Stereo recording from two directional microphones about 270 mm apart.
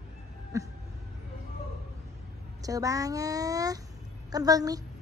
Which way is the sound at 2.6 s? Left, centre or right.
Centre.